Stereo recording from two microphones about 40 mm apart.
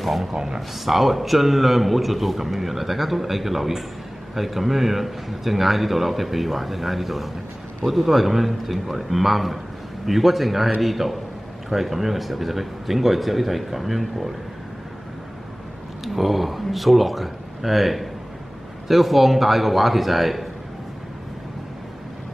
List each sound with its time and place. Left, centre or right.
0.0 s speech: centre
0.3 s speech: centre
0.6 s a man's voice: centre
16.0 s a man's voice: centre